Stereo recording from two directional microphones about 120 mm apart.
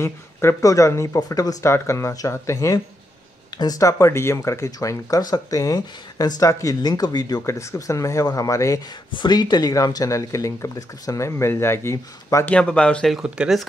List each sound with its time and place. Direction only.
0.0 s speech: 20° left (ahead or behind)
9.1 s speech: 40° left (ahead or behind)
12.4 s speech: 10° left (ahead or behind)
13.1 s speech: 5° right (ahead or behind)